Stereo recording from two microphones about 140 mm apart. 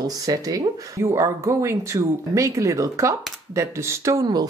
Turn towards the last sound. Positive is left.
turn(degrees=-30)  # may be behind; listen again after turning